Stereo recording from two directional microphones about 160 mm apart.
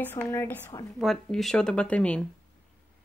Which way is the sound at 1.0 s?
Centre (ahead or behind).